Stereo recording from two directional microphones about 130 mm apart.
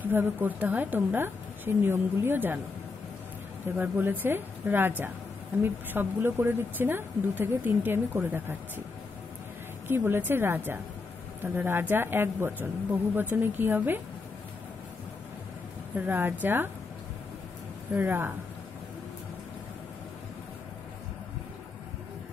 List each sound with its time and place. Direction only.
0.0 s speech: 15° right (ahead or behind)
3.6 s speech: 15° right (ahead or behind)
9.8 s speech: 15° right (ahead or behind)
16.1 s speech: 15° right (ahead or behind)
17.9 s speech: 15° right (ahead or behind)